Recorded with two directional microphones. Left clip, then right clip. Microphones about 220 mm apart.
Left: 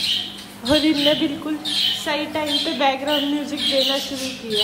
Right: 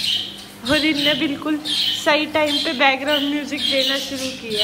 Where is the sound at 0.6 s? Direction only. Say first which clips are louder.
Even; 10° left (ahead or behind).